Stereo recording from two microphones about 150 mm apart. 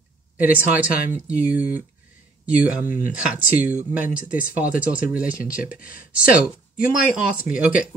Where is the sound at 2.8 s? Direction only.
65° left (ahead or behind).